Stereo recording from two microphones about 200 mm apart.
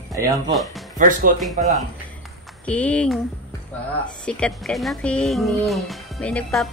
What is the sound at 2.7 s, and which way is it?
Music, 5° left (ahead or behind).